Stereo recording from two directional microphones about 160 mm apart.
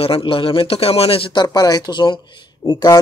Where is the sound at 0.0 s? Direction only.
35° left (ahead or behind).